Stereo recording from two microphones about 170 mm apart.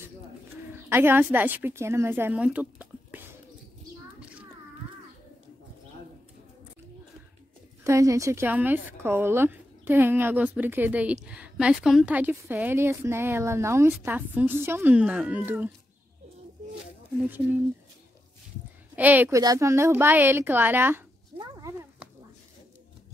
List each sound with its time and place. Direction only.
0.8 s a woman's voice: 15° right (ahead or behind)
4.2 s a sound: 5° right (ahead or behind)
7.8 s a woman's voice: 20° right (ahead or behind)
18.9 s a woman's voice: 10° right (ahead or behind)